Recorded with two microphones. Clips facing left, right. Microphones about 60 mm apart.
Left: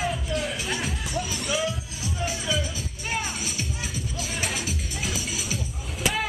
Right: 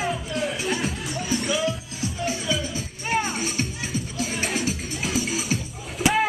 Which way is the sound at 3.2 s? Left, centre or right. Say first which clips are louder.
Right 5 dB; right.